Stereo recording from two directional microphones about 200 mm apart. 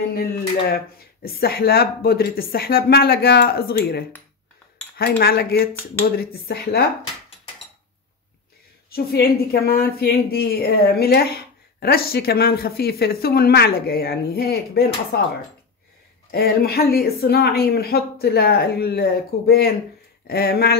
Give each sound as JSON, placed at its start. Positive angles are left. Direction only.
{"t": 0.1, "sound": "speech", "side_deg": 50}
{"t": 8.9, "sound": "speech", "side_deg": 50}
{"t": 16.3, "sound": "speech", "side_deg": 50}